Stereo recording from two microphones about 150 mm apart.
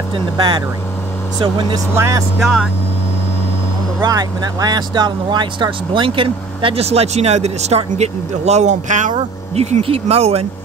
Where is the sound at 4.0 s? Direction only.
25° right (ahead or behind).